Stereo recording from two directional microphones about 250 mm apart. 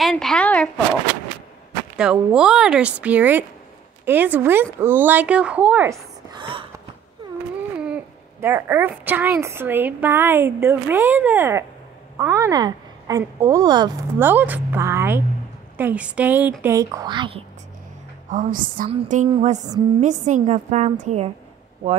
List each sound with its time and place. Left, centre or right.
0.0 s speech: centre
2.0 s speech: centre
6.3 s gasp: centre
7.8 s speech: centre
18.3 s a woman's voice: right